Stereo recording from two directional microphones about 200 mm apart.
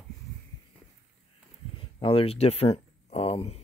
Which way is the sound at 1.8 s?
25° left (ahead or behind).